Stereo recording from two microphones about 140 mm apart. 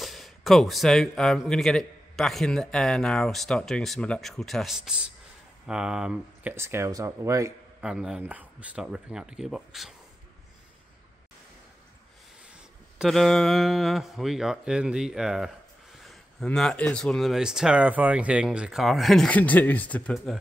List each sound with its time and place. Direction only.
0.0 s speech: centre (ahead or behind)
6.5 s speech: 20° right (ahead or behind)
7.8 s speech: 5° right (ahead or behind)
13.0 s speech: centre (ahead or behind)